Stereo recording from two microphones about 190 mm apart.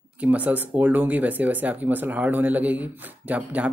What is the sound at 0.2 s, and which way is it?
Speech, 10° right (ahead or behind).